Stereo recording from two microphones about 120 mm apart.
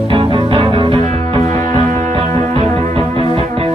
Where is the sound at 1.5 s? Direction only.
90° right.